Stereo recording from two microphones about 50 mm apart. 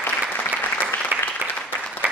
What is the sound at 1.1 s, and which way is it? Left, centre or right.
Applause, right.